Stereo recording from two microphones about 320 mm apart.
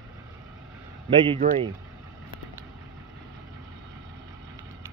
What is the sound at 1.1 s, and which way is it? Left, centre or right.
Speech, centre.